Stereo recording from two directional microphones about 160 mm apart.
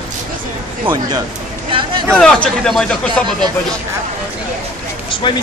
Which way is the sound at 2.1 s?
5° left (ahead or behind).